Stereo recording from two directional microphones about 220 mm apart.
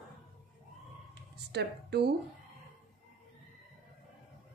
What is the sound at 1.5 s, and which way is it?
Speech, 50° right (ahead or behind).